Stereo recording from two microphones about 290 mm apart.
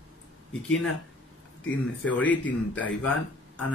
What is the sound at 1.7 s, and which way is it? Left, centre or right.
Speech, centre.